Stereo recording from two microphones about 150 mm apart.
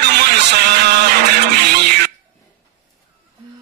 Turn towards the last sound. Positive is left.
turn(degrees=-90)